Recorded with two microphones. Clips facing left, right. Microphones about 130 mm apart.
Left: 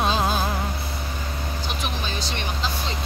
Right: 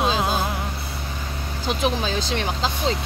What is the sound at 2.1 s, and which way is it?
Speech, 90° right.